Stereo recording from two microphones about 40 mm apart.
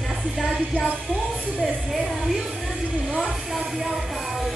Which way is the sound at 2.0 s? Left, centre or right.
Centre.